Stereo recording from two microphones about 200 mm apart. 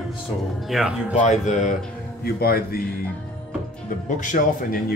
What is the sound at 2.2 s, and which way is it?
Speech, 50° left (ahead or behind).